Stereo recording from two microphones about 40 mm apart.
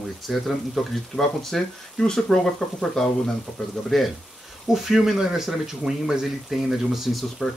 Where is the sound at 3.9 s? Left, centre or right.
Centre.